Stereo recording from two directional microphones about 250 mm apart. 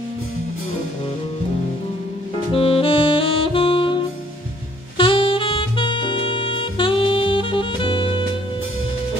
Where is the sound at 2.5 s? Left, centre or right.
Left.